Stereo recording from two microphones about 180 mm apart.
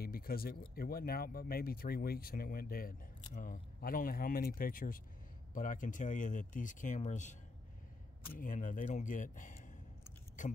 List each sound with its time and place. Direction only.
0.0 s speech: 55° left (ahead or behind)
8.4 s speech: 45° left (ahead or behind)